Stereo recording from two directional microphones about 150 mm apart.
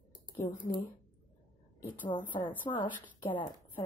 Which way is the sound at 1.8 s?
10° left (ahead or behind).